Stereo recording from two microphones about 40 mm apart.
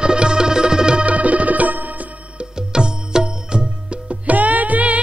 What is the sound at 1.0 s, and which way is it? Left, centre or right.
Music, right.